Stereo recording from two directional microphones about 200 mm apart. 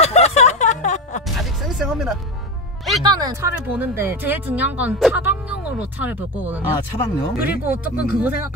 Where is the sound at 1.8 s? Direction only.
5° right (ahead or behind).